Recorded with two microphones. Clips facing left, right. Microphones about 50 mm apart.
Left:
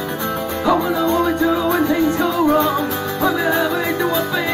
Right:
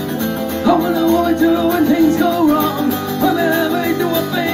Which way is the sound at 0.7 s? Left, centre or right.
Centre.